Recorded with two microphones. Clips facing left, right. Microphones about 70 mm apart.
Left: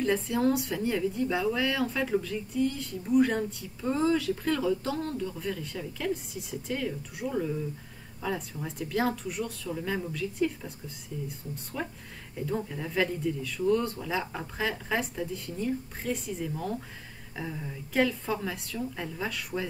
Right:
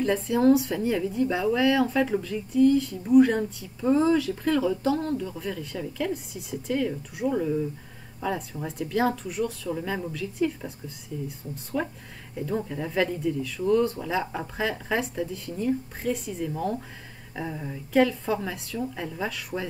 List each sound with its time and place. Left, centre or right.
0.0 s speech: centre
9.7 s speech: centre
11.7 s speech: centre
17.4 s speech: centre
17.9 s speech: centre